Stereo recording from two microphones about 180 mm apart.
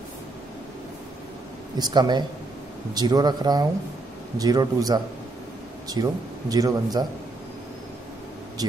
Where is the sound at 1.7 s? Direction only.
25° right (ahead or behind).